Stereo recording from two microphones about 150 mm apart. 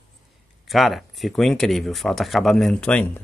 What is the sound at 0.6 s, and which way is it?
Speech, centre (ahead or behind).